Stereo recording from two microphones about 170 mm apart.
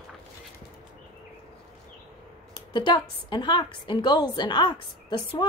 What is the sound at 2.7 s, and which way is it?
A woman's voice, 25° left (ahead or behind).